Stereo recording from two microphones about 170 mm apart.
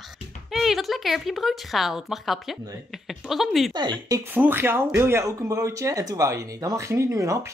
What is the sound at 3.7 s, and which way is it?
Speech, 25° right (ahead or behind).